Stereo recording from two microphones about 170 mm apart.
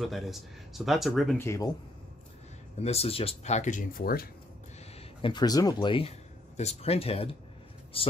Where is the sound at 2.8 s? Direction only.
35° left (ahead or behind); by 4.3 s 60° left (ahead or behind).